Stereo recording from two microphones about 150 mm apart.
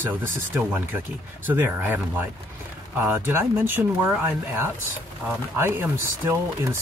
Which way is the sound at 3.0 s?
15° right (ahead or behind).